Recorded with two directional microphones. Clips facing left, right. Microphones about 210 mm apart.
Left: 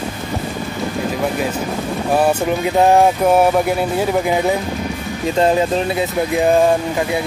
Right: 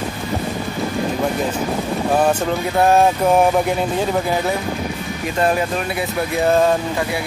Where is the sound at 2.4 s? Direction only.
15° left (ahead or behind).